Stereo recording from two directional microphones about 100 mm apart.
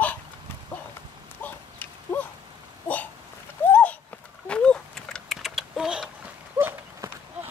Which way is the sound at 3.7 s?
15° left (ahead or behind).